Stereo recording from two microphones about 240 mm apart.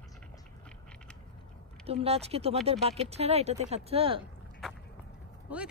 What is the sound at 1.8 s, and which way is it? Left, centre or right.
Speech, right.